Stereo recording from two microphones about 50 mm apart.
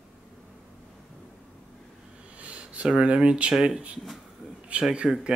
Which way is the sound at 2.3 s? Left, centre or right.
Right.